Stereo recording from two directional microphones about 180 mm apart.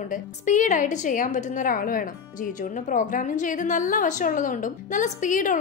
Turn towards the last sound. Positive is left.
turn(degrees=45)  # may be behind; listen again after turning